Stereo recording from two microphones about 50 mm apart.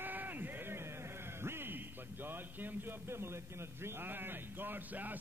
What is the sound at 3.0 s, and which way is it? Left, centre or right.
A man's voice, right.